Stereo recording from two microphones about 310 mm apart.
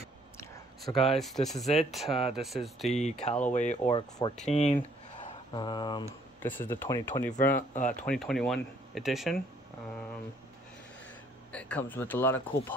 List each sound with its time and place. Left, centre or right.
0.4 s speech: centre
2.9 s speech: left
4.7 s a sound: centre
6.4 s speech: centre
7.7 s speech: left
8.0 s speech: centre
11.5 s speech: centre